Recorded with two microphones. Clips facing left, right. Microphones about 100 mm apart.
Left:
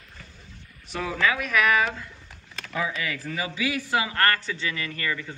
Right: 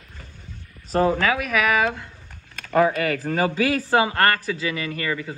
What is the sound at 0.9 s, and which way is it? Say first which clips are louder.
Speech: right 11 dB; 40° right (ahead or behind).